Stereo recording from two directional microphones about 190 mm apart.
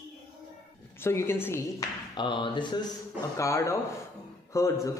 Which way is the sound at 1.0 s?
10° left (ahead or behind).